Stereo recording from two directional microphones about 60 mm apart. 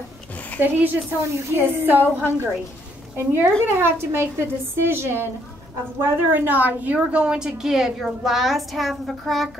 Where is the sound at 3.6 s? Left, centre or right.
Right.